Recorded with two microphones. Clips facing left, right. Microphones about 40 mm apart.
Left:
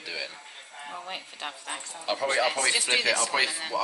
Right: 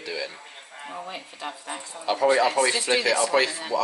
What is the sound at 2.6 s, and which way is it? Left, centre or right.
Speech, right.